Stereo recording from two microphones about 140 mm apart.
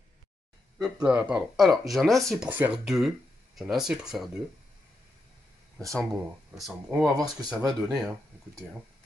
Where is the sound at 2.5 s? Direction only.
15° right (ahead or behind).